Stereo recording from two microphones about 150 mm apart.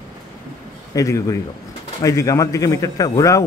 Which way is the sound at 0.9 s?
20° left (ahead or behind).